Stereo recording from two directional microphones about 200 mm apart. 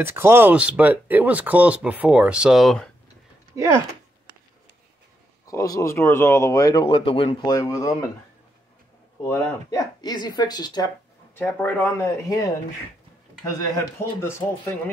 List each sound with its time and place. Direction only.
0.0 s speech: 10° right (ahead or behind)
5.5 s speech: 15° left (ahead or behind)
9.2 s speech: 15° left (ahead or behind)
13.7 s speech: 10° left (ahead or behind)